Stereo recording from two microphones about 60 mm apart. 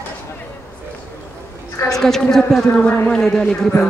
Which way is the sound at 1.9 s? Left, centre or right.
Centre.